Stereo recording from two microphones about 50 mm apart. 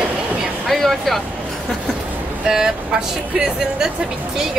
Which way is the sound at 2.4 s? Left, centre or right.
Centre.